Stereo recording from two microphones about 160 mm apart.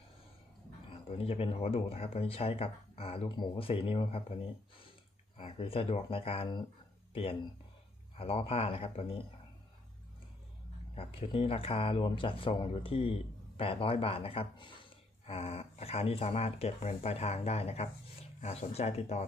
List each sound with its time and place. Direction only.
1.0 s speech: 35° left (ahead or behind)
5.4 s speech: 35° left (ahead or behind)
8.2 s speech: 35° left (ahead or behind)
11.0 s speech: 35° left (ahead or behind)